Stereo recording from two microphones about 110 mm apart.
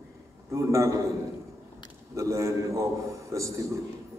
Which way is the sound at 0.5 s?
25° right (ahead or behind).